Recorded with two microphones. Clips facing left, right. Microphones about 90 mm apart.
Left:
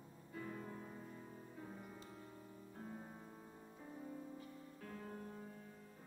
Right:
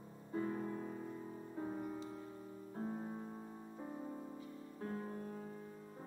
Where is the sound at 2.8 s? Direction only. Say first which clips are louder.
Right 9 dB; 30° right (ahead or behind).